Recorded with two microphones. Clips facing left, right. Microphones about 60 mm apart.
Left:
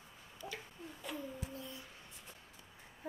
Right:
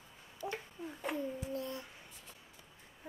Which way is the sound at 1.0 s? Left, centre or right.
Right.